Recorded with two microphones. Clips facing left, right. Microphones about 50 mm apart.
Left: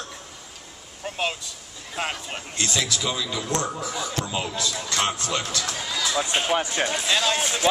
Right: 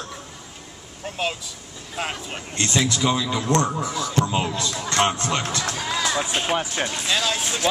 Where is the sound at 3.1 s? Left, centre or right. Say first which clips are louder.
Right 5 dB; right.